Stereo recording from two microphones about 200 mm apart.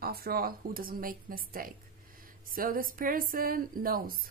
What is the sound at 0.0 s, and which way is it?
A woman's voice, 50° right (ahead or behind).